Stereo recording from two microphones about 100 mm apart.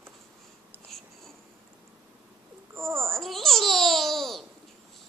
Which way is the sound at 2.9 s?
Centre (ahead or behind).